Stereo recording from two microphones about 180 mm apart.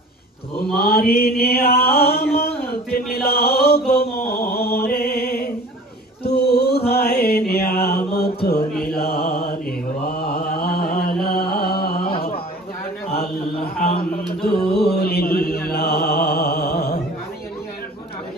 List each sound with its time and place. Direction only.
0.7 s mantra: 60° left (ahead or behind)
4.3 s music: 60° left (ahead or behind)
6.2 s male singing: 60° left (ahead or behind)
6.9 s mantra: 60° left (ahead or behind)
11.2 s music: 60° left (ahead or behind)
13.8 s speech: 55° left (ahead or behind)
14.8 s mantra: 60° left (ahead or behind)